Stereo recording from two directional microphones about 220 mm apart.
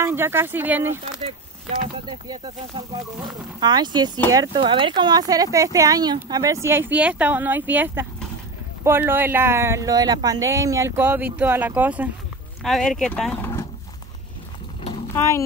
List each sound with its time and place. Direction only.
0.0 s speech: 10° right (ahead or behind)
2.0 s speech: 20° right (ahead or behind)
3.6 s speech: 20° right (ahead or behind); by 13.7 s 5° left (ahead or behind)
15.1 s speech: 15° left (ahead or behind)